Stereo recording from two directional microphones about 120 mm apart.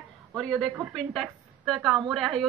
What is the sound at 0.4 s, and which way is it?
A woman's voice, 5° left (ahead or behind).